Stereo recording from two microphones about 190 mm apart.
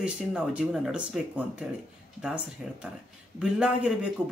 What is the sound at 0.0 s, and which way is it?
Speech, 5° right (ahead or behind).